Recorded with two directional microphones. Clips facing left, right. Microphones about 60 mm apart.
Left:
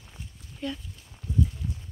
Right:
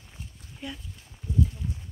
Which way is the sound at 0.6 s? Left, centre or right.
Centre.